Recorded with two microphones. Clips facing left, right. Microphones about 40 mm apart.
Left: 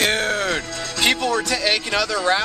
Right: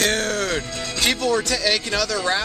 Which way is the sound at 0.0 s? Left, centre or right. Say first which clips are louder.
Left 1 dB; centre.